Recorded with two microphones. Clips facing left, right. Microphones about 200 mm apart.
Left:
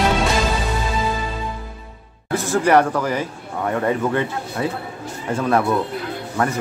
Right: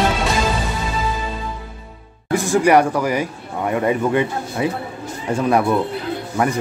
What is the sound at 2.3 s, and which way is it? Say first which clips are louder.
A man's voice: right 2 dB; 15° right (ahead or behind).